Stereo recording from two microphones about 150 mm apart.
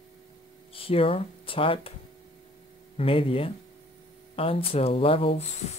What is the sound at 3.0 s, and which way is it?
Speech, 40° left (ahead or behind).